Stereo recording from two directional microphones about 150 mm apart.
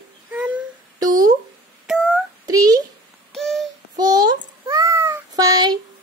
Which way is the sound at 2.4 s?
25° right (ahead or behind).